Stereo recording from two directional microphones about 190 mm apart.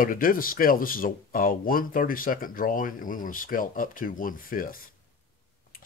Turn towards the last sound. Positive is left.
turn(degrees=50)  # may be behind; listen again after turning